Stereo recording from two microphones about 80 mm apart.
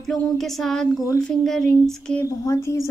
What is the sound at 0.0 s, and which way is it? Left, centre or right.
Speech, centre.